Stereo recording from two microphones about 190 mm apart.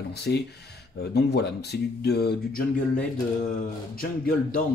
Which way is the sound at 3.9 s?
50° left (ahead or behind).